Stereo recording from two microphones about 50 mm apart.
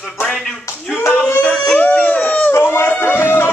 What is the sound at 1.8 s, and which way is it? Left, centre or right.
Speech, left.